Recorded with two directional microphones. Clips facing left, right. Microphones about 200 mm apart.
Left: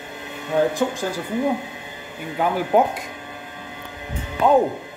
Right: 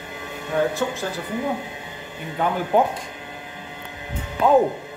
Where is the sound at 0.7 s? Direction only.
15° left (ahead or behind).